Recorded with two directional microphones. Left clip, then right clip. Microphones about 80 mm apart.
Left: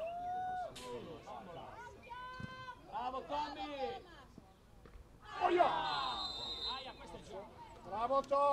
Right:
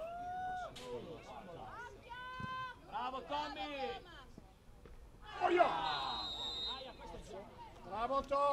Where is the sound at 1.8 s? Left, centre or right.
Right.